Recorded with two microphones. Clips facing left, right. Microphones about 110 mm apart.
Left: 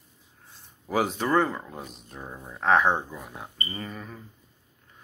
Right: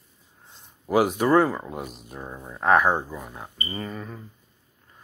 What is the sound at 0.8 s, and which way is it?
Speech, 10° right (ahead or behind).